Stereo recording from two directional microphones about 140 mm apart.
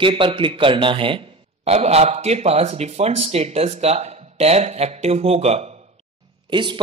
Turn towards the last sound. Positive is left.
turn(degrees=-35)  # may be behind; listen again after turning